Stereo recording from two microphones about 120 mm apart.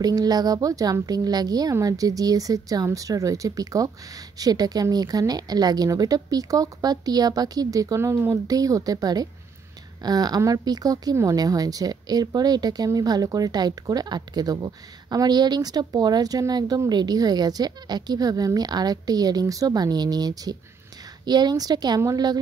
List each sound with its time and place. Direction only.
0.0 s speech: 35° right (ahead or behind)